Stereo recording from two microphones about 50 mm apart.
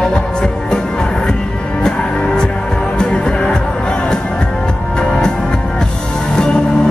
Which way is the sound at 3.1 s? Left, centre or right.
Centre.